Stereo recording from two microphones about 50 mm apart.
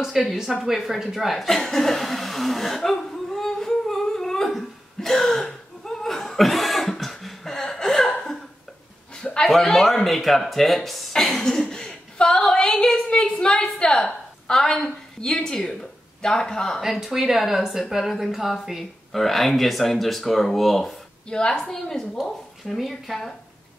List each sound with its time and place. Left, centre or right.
0.0 s speech: centre
0.7 s chuckle: centre
9.1 s a sound: centre
9.5 s a woman's voice: centre
16.9 s speech: centre
21.3 s a woman's voice: centre